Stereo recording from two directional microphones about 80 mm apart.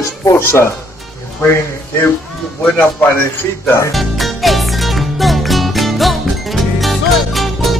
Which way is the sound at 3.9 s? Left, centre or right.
Centre.